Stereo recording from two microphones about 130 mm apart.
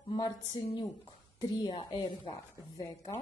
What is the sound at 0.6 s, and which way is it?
Speech, 45° left (ahead or behind).